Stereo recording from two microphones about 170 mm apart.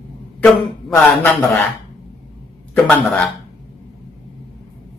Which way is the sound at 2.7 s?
10° left (ahead or behind).